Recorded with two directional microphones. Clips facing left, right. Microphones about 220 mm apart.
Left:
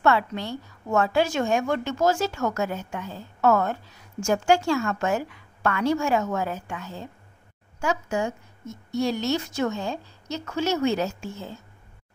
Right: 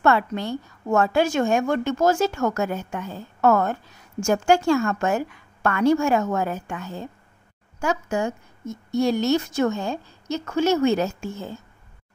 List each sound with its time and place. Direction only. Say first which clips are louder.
0.0 s a woman's voice: right 2 dB; 50° right (ahead or behind)